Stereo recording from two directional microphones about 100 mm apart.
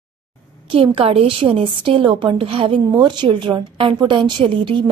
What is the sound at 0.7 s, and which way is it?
A woman's voice, 60° right (ahead or behind).